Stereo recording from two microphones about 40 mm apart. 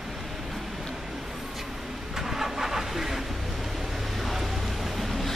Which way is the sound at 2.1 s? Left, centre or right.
Centre.